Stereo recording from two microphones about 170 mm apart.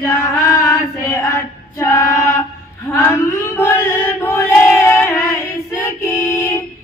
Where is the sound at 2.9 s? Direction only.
20° left (ahead or behind).